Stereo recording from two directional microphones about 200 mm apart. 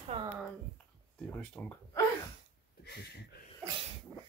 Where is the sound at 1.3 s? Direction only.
5° left (ahead or behind).